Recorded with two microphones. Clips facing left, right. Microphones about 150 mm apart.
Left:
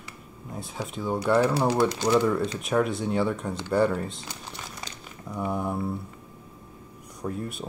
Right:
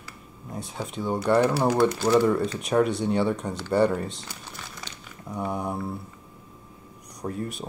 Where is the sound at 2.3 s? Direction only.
Centre (ahead or behind).